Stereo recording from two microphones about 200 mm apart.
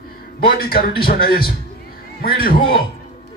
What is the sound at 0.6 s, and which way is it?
Speech, 50° left (ahead or behind).